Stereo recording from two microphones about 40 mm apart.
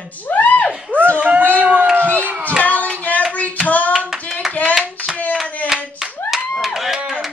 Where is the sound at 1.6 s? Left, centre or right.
Right.